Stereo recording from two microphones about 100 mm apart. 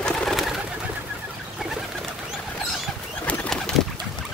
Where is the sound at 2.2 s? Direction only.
Centre (ahead or behind).